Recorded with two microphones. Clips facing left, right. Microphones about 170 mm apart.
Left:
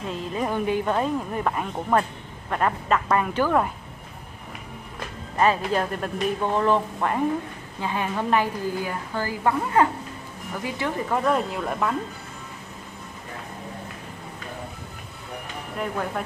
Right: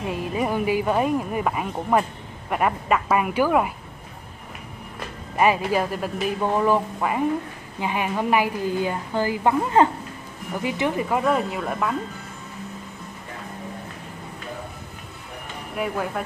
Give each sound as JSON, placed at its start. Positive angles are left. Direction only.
{"t": 0.0, "sound": "a woman's voice", "side_deg": -10}
{"t": 5.3, "sound": "a woman's voice", "side_deg": -10}
{"t": 11.1, "sound": "speech", "side_deg": -5}